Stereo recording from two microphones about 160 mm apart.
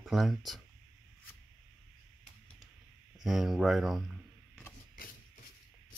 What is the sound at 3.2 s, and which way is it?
Speech, centre (ahead or behind).